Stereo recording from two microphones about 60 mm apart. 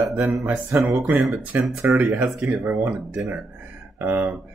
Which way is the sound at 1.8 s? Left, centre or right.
Right.